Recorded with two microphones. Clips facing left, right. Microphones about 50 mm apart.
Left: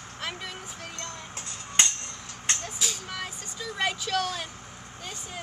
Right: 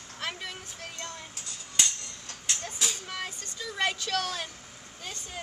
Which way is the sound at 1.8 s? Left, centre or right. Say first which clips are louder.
Left 4 dB; left.